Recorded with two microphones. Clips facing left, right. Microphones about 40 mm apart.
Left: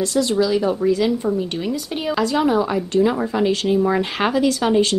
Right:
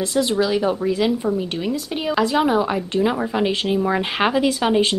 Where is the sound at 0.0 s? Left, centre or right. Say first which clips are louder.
Left 1 dB; right.